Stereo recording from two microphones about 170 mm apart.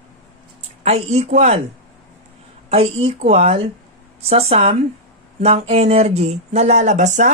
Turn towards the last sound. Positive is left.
turn(degrees=-45)  # may be behind; listen again after turning